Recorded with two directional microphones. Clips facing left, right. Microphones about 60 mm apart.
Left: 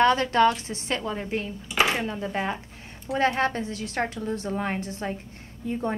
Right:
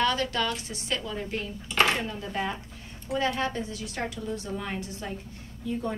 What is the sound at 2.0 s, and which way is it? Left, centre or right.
Speech, left.